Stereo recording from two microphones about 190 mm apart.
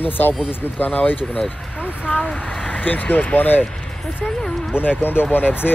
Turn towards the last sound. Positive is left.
turn(degrees=10)  # may be behind; listen again after turning